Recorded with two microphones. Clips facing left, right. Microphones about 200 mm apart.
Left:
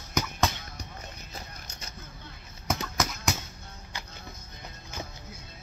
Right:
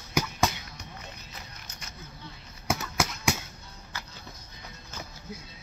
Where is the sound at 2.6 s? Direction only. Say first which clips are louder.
Right 1 dB; 10° right (ahead or behind).